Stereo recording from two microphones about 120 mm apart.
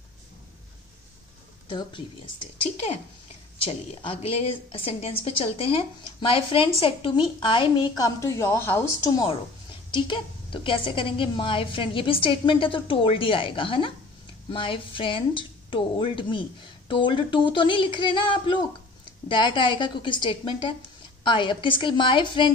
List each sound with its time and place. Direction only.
1.7 s speech: 45° left (ahead or behind)
4.1 s a woman's voice: 50° left (ahead or behind)
8.2 s a woman's voice: 25° left (ahead or behind)
9.8 s a woman's voice: 45° left (ahead or behind)